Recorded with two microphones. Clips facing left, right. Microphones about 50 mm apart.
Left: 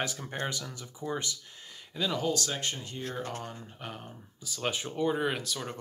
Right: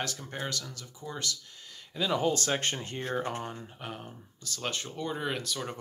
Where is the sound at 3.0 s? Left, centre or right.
Right.